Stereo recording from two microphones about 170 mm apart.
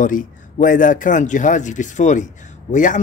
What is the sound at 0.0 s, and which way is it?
A man's voice, 50° left (ahead or behind).